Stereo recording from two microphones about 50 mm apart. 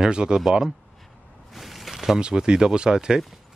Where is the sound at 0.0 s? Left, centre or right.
Centre.